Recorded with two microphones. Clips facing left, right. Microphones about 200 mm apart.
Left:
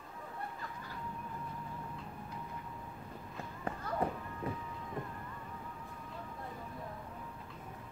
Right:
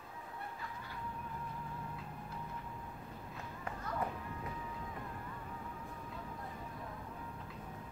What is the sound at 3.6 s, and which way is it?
Run, 30° left (ahead or behind).